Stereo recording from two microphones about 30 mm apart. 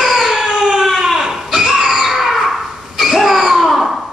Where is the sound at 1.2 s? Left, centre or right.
Centre.